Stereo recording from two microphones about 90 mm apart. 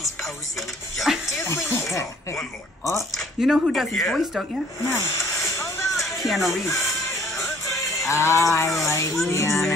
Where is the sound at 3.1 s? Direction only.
Centre (ahead or behind).